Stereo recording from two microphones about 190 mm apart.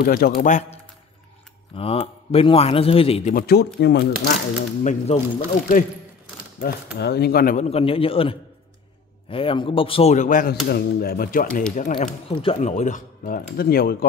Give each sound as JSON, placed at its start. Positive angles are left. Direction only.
{"t": 0.0, "sound": "speech", "side_deg": 50}
{"t": 1.8, "sound": "a man's voice", "side_deg": 30}
{"t": 3.3, "sound": "speech", "side_deg": 55}
{"t": 4.8, "sound": "a man's voice", "side_deg": 35}
{"t": 6.6, "sound": "speech", "side_deg": 60}
{"t": 7.7, "sound": "a man's voice", "side_deg": 30}